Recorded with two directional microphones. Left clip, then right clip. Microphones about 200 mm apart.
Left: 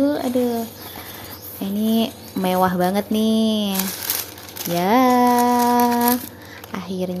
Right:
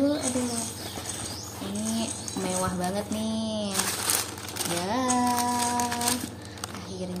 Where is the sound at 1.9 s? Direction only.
40° left (ahead or behind).